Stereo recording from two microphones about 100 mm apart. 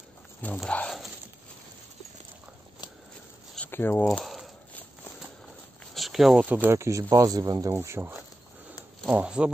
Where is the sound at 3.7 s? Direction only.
20° left (ahead or behind).